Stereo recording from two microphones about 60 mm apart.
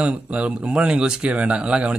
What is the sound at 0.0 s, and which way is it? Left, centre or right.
Speech, right.